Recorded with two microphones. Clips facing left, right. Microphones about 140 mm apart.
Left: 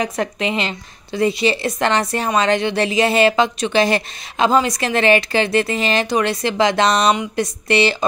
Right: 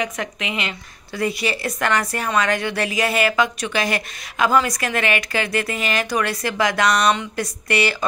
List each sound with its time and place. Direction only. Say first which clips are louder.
0.0 s a woman's voice: left 5 dB; 35° left (ahead or behind)